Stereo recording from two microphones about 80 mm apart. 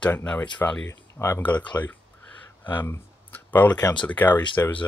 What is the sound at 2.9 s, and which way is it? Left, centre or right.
Clicking, left.